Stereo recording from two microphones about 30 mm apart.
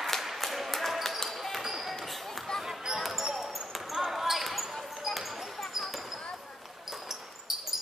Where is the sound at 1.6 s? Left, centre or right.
Centre.